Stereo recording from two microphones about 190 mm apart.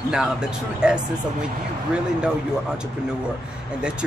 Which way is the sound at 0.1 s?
5° right (ahead or behind).